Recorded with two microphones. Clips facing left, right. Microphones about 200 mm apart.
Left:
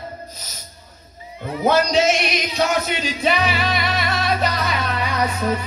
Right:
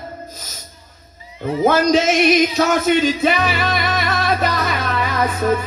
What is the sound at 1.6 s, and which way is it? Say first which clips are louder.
Music: right 2 dB; 50° right (ahead or behind).